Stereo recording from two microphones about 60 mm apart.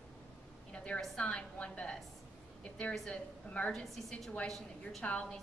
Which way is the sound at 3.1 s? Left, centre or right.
Left.